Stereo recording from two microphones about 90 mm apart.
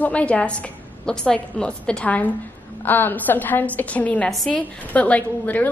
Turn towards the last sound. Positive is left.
turn(degrees=15)  # may be behind; listen again after turning